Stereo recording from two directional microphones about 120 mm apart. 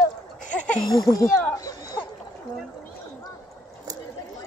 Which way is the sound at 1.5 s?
35° left (ahead or behind).